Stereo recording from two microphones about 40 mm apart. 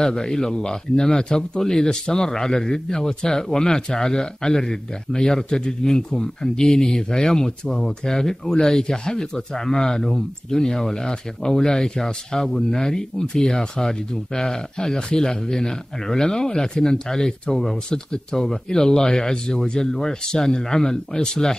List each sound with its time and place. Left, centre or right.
0.0 s speech: centre